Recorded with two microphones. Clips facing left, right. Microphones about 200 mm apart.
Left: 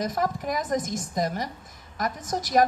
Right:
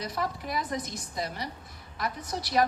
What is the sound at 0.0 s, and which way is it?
A woman's voice, 45° left (ahead or behind).